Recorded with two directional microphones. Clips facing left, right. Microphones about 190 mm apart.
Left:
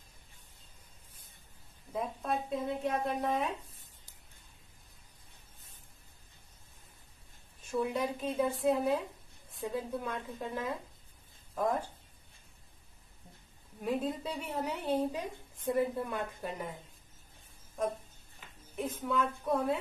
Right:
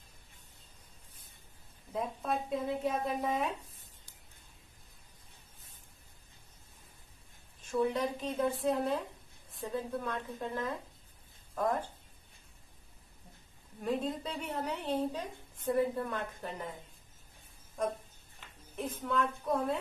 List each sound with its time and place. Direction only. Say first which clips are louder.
1.9 s speech: even; centre (ahead or behind)
7.7 s a woman's voice: right 1 dB; 10° left (ahead or behind)
13.8 s a woman's voice: left 1 dB; 5° left (ahead or behind)
17.8 s speech: even; centre (ahead or behind)